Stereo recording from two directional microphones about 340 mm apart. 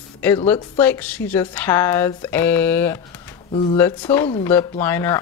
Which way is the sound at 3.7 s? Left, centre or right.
Centre.